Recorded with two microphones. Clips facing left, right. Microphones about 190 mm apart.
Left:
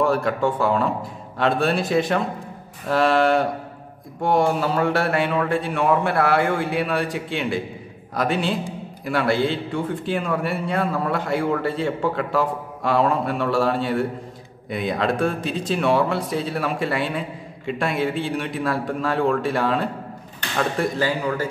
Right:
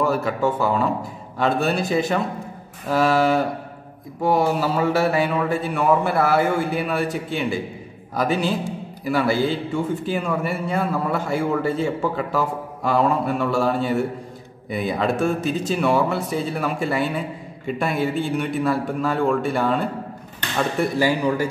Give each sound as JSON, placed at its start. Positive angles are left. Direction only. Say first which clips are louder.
{"t": 0.0, "sound": "a man's voice", "louder": "left 1 dB", "side_deg": -5}
{"t": 21.2, "sound": "speech", "louder": "right 3 dB", "side_deg": -15}